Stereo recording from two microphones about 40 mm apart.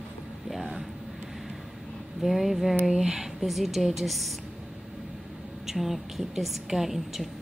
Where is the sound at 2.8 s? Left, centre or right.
Centre.